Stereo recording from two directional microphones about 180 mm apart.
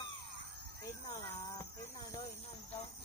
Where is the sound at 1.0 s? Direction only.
25° left (ahead or behind).